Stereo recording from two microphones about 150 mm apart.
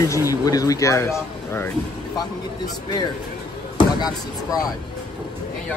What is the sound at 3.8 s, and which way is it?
Speech, 25° left (ahead or behind).